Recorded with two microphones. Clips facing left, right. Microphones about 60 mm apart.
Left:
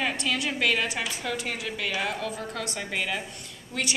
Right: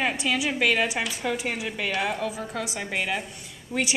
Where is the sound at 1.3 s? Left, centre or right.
Centre.